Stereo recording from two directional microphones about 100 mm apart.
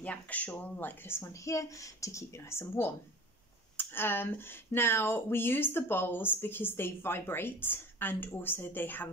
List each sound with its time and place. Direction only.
0.0 s speech: 15° left (ahead or behind)